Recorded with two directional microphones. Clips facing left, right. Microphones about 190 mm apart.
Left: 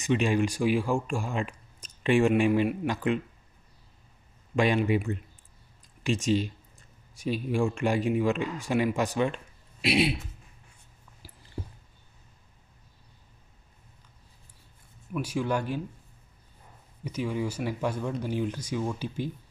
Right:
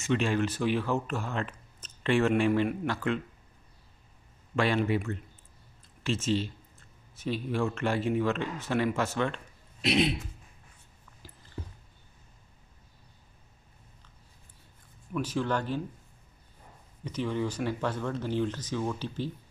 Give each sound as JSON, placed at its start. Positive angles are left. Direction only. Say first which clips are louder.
{"t": 0.0, "sound": "speech", "louder": "left 2 dB", "side_deg": 15}
{"t": 4.6, "sound": "speech", "louder": "left 2 dB", "side_deg": 15}
{"t": 11.2, "sound": "a sound", "louder": "even", "side_deg": 10}
{"t": 15.1, "sound": "speech", "louder": "left 1 dB", "side_deg": 10}
{"t": 17.0, "sound": "speech", "louder": "even", "side_deg": 10}